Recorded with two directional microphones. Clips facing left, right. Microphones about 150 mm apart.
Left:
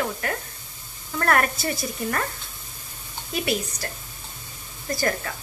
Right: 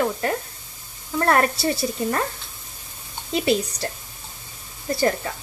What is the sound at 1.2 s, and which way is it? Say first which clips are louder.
Speech: right 3 dB; 25° right (ahead or behind).